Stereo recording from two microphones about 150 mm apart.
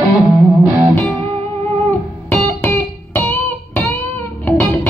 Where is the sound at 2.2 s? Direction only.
15° left (ahead or behind).